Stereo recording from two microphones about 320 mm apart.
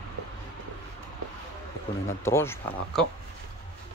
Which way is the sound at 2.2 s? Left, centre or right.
Centre.